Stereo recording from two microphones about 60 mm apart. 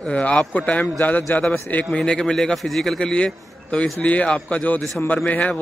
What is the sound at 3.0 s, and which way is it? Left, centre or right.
A man's voice, centre.